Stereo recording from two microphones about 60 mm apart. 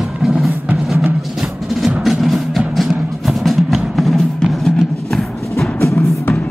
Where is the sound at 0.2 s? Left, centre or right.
Centre.